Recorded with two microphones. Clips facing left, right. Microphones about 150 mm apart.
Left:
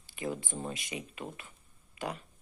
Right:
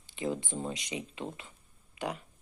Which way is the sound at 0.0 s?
20° right (ahead or behind).